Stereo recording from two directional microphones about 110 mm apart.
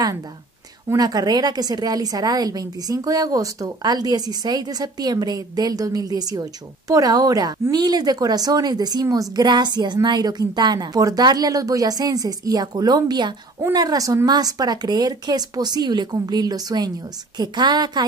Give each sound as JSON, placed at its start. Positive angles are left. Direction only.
{"t": 0.9, "sound": "speech", "side_deg": -35}